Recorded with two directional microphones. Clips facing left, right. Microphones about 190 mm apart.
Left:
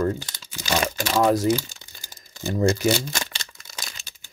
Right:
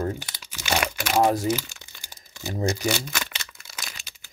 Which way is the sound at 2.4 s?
55° left (ahead or behind).